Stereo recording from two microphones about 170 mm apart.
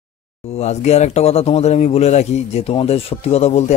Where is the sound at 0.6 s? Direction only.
40° left (ahead or behind).